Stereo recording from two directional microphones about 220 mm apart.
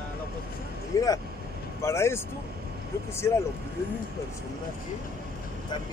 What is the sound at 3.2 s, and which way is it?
Speech, 15° left (ahead or behind).